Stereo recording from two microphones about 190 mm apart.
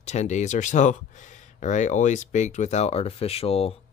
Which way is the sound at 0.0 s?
35° left (ahead or behind).